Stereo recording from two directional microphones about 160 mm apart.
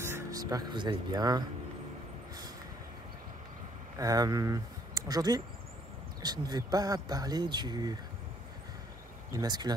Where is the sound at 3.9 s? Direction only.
20° right (ahead or behind).